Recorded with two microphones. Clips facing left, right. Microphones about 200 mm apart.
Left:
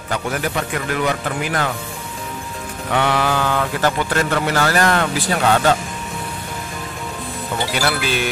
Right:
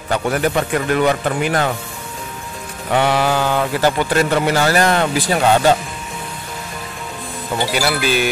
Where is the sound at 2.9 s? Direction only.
15° right (ahead or behind).